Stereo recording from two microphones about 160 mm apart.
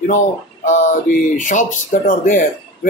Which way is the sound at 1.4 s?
55° left (ahead or behind).